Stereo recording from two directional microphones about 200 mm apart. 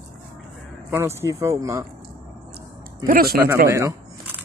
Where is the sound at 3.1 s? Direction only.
50° right (ahead or behind).